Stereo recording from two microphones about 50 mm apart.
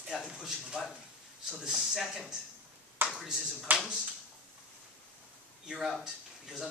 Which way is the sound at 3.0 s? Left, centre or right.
Right.